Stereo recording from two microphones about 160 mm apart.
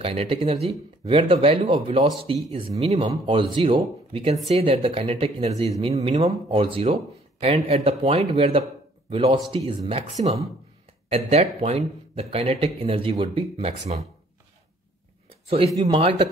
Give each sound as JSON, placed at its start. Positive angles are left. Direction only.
{"t": 0.0, "sound": "speech", "side_deg": -40}
{"t": 11.1, "sound": "speech", "side_deg": -40}
{"t": 15.4, "sound": "speech", "side_deg": -35}